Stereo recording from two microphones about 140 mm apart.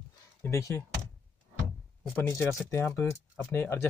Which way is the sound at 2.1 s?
20° left (ahead or behind).